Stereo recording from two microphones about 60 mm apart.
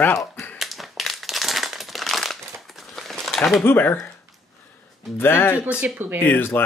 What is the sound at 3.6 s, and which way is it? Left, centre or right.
Speech, left.